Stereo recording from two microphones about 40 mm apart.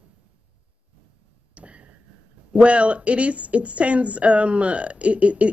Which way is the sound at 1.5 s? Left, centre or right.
Right.